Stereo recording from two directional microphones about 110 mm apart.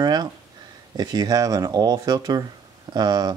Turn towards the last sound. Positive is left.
turn(degrees=-40)  # may be behind; listen again after turning